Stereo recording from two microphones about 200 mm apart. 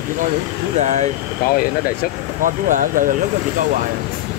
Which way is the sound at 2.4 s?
40° right (ahead or behind).